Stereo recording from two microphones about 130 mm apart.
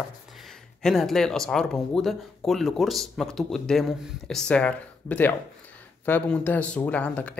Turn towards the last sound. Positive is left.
turn(degrees=10)  # may be behind; listen again after turning